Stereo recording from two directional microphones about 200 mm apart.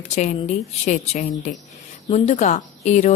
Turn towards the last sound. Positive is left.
turn(degrees=35)  # may be behind; listen again after turning